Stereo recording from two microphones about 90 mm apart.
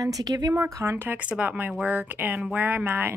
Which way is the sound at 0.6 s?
30° right (ahead or behind).